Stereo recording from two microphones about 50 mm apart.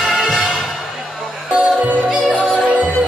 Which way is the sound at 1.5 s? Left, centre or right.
Right.